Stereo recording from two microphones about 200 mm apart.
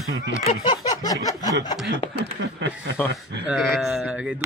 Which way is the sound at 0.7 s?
20° left (ahead or behind).